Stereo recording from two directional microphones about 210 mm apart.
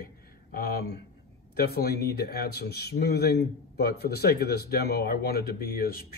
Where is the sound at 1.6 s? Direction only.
50° left (ahead or behind).